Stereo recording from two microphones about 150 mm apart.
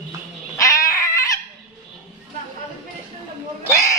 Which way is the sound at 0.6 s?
20° left (ahead or behind).